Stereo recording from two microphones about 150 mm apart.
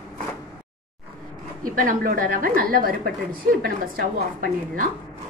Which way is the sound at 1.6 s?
65° right (ahead or behind).